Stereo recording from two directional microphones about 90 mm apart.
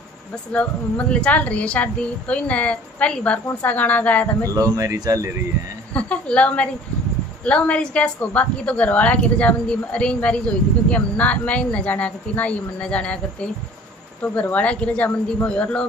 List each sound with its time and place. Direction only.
0.5 s a woman's voice: 15° left (ahead or behind)
4.6 s speech: 40° right (ahead or behind)
5.9 s a woman's voice: 15° left (ahead or behind)